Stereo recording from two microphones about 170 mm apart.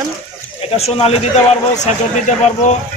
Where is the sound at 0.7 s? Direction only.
35° left (ahead or behind).